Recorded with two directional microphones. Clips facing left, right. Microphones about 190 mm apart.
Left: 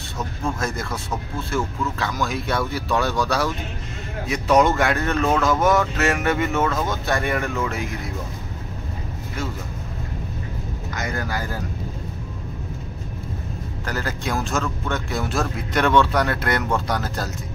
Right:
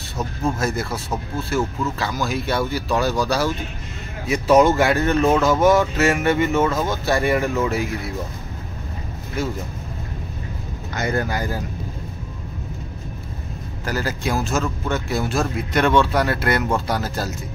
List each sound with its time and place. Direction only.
0.6 s speech: 5° right (ahead or behind)
11.0 s speech: 30° right (ahead or behind)
13.8 s speech: 5° right (ahead or behind)